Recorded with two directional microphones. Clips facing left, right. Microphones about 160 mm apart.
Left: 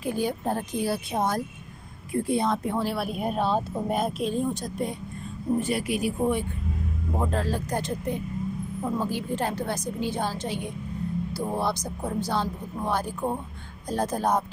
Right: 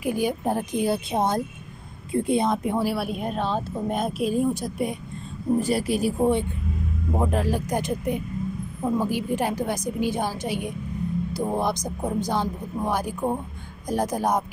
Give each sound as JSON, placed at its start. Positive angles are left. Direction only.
{"t": 0.0, "sound": "a woman's voice", "side_deg": -15}
{"t": 5.6, "sound": "speech", "side_deg": -35}
{"t": 7.1, "sound": "a woman's voice", "side_deg": -15}